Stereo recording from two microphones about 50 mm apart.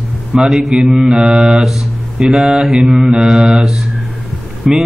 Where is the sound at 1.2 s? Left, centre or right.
Right.